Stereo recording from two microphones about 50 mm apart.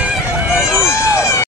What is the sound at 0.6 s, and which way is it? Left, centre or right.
Speech, centre.